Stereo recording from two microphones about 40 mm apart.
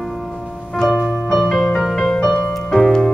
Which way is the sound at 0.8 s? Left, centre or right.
Centre.